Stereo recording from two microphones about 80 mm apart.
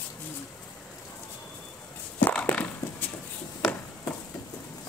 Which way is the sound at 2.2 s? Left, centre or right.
Left.